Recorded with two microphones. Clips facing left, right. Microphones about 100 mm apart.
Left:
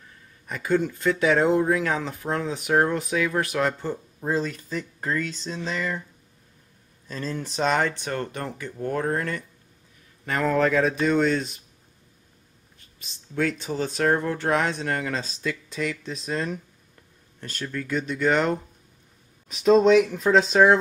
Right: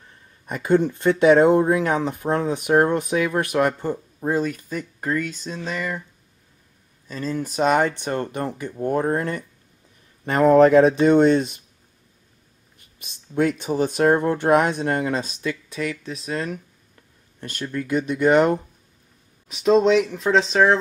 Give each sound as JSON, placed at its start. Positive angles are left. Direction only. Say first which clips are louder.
{"t": 0.5, "sound": "speech", "louder": "right 5 dB", "side_deg": -20}
{"t": 7.1, "sound": "speech", "louder": "right 4 dB", "side_deg": -5}
{"t": 13.3, "sound": "speech", "louder": "right 5 dB", "side_deg": -20}
{"t": 15.4, "sound": "speech", "louder": "right 2 dB", "side_deg": -5}
{"t": 17.4, "sound": "speech", "louder": "right 4 dB", "side_deg": -15}
{"t": 19.4, "sound": "speech", "louder": "even", "side_deg": 0}